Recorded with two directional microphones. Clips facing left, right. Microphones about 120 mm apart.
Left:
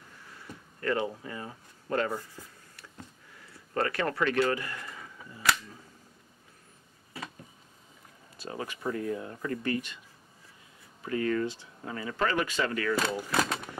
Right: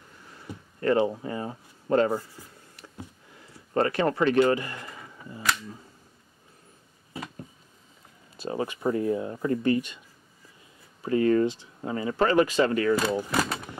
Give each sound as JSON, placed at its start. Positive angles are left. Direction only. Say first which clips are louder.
{"t": 0.7, "sound": "speech", "louder": "right 7 dB", "side_deg": -30}
{"t": 2.4, "sound": "a sound", "louder": "right 2 dB", "side_deg": -15}
{"t": 7.2, "sound": "a sound", "louder": "right 4 dB", "side_deg": -20}
{"t": 8.4, "sound": "speech", "louder": "right 7 dB", "side_deg": -25}
{"t": 11.1, "sound": "speech", "louder": "right 7 dB", "side_deg": -25}
{"t": 13.3, "sound": "vehicle", "louder": "right 2 dB", "side_deg": -5}